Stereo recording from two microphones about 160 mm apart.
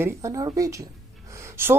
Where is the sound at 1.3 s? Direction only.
15° right (ahead or behind).